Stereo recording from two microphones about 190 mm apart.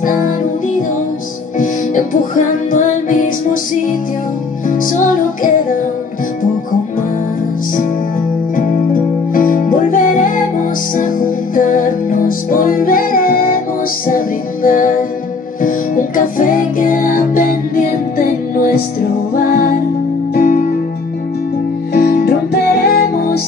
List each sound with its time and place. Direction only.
0.0 s music: 45° left (ahead or behind)
4.6 s music: 45° left (ahead or behind)
8.5 s music: 45° left (ahead or behind)
20.3 s music: 50° left (ahead or behind)
21.9 s music: 55° left (ahead or behind)